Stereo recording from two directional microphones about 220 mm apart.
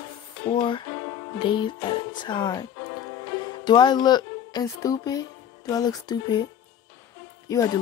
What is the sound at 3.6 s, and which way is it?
Music, 20° left (ahead or behind).